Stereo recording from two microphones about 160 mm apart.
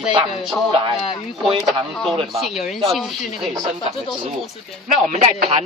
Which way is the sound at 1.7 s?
Centre (ahead or behind).